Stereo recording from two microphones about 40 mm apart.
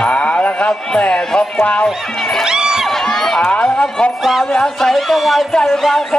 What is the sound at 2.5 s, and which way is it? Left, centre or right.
Crowd, centre.